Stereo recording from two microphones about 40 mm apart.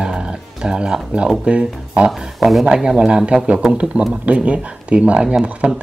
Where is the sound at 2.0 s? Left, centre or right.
Centre.